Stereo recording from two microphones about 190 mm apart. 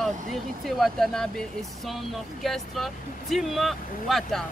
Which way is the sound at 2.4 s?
Centre (ahead or behind).